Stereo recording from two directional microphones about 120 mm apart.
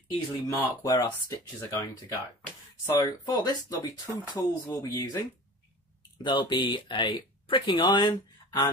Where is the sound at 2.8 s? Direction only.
30° left (ahead or behind).